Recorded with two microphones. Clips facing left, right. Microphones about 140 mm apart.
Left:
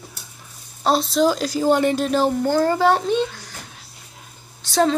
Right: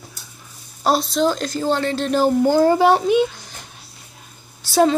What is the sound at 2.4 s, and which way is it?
A woman's voice, 10° right (ahead or behind).